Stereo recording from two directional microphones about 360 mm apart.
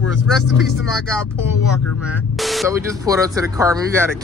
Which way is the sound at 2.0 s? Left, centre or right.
Centre.